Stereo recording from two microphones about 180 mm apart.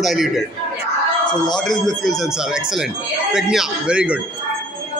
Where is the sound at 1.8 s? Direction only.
Centre (ahead or behind).